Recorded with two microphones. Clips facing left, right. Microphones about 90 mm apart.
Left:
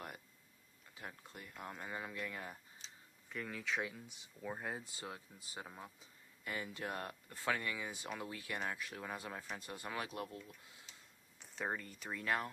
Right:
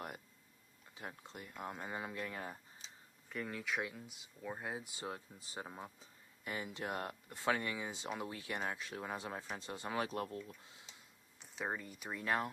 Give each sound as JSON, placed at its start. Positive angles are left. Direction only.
{"t": 0.9, "sound": "speech", "side_deg": -25}
{"t": 3.3, "sound": "speech", "side_deg": 0}
{"t": 4.8, "sound": "speech", "side_deg": -20}
{"t": 5.1, "sound": "speech", "side_deg": -30}
{"t": 5.7, "sound": "speech", "side_deg": -15}
{"t": 11.3, "sound": "speech", "side_deg": 0}
{"t": 12.2, "sound": "speech", "side_deg": -25}